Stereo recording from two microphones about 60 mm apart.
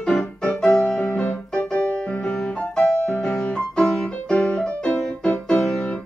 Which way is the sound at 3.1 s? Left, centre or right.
Centre.